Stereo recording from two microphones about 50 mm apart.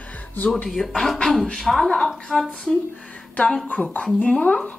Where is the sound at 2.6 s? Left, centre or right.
Left.